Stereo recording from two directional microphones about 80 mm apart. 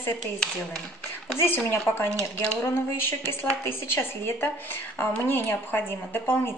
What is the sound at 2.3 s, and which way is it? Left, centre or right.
A woman's voice, left.